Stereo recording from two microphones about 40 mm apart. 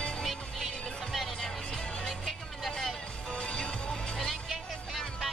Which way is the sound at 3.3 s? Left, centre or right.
Left.